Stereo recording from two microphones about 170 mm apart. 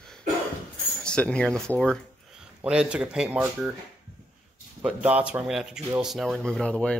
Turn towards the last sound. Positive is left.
turn(degrees=5)  # may be behind; listen again after turning